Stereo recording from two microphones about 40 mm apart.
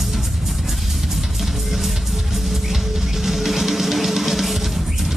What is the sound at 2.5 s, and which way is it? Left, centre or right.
Music, centre.